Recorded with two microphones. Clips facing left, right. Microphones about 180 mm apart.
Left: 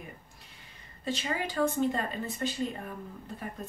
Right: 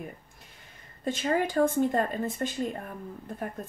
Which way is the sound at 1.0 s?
50° right (ahead or behind).